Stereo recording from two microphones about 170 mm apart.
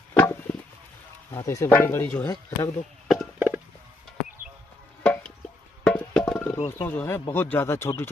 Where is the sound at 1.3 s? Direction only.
20° left (ahead or behind).